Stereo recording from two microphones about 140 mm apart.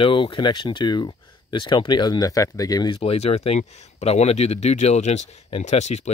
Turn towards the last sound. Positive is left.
turn(degrees=55)  # may be behind; listen again after turning